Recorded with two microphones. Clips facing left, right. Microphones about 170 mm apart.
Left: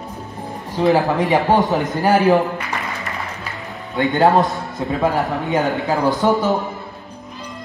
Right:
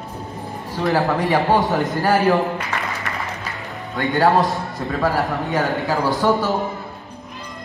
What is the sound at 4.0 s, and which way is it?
A man's voice, 20° left (ahead or behind).